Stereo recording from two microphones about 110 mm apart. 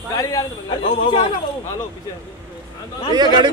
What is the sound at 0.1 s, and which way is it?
Speech, 35° left (ahead or behind).